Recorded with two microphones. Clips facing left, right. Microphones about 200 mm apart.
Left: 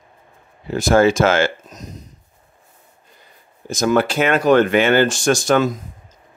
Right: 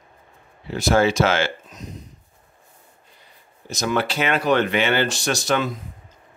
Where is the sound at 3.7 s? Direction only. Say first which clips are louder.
Left 6 dB; 50° left (ahead or behind).